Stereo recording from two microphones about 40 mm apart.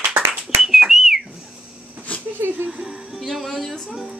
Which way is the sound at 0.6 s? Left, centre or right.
Centre.